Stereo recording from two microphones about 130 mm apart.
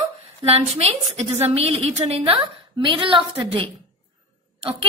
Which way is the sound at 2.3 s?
40° right (ahead or behind).